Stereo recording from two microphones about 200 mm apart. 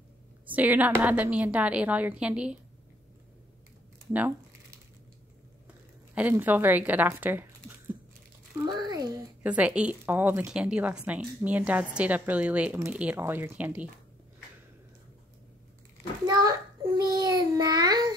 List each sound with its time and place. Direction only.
0.5 s a woman's voice: 10° right (ahead or behind)
6.1 s speech: 10° right (ahead or behind)
9.4 s a woman's voice: 5° right (ahead or behind)
16.3 s a child's voice: 15° right (ahead or behind)